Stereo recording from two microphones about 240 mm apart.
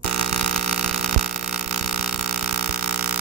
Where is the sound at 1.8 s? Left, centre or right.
Centre.